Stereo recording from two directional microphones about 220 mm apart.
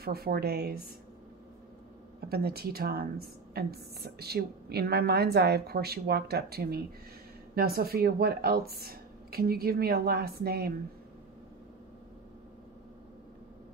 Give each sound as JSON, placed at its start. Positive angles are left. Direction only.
{"t": 0.0, "sound": "a woman's voice", "side_deg": -45}
{"t": 2.2, "sound": "a woman's voice", "side_deg": -45}